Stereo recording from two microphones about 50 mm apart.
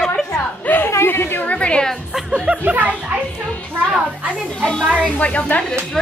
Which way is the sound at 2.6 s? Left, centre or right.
Right.